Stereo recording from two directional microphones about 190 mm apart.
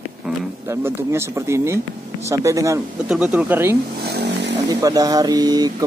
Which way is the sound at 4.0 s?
60° right (ahead or behind).